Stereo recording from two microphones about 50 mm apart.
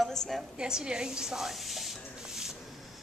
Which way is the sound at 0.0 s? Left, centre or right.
Centre.